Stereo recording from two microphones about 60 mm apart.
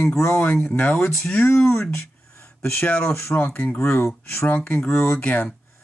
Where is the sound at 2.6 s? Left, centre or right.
Left.